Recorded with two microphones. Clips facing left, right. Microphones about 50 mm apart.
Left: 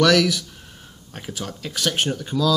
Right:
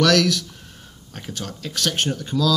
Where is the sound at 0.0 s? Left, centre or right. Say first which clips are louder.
Left 1 dB; centre.